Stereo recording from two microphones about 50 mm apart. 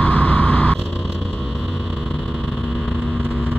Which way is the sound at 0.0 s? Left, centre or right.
Left.